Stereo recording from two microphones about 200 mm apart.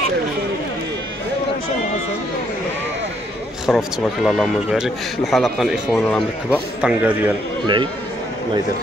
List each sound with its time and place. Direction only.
3.6 s speech: centre (ahead or behind)
6.8 s a man's voice: 5° right (ahead or behind)
7.6 s speech: 25° right (ahead or behind)